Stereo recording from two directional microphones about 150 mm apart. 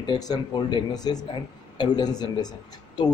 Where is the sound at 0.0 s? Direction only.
30° left (ahead or behind).